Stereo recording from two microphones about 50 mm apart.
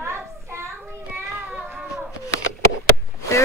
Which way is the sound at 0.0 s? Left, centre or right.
Right.